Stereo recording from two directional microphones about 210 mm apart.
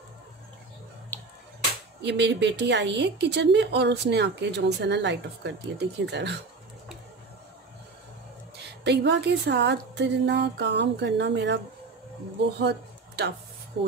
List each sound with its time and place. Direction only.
2.0 s speech: 55° right (ahead or behind)
8.8 s speech: 55° right (ahead or behind)
12.5 s a sound: 55° right (ahead or behind)